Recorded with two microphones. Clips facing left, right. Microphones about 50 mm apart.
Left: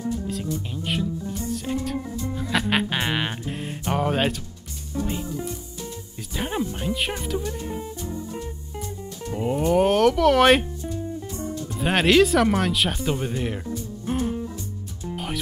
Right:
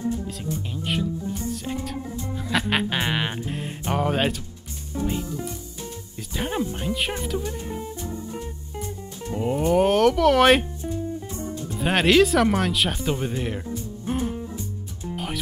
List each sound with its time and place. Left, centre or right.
0.6 s music: centre
9.3 s music: centre
11.8 s music: centre
15.1 s music: centre